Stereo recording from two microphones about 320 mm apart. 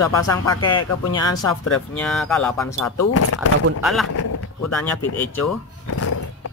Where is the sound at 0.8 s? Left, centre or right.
Left.